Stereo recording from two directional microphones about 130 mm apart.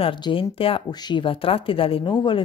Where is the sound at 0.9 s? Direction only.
35° left (ahead or behind).